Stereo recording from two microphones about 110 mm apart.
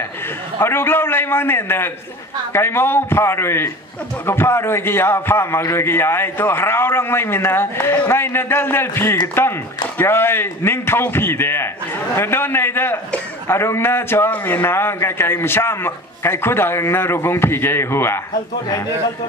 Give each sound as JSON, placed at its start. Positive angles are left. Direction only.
{"t": 0.6, "sound": "a man's voice", "side_deg": 20}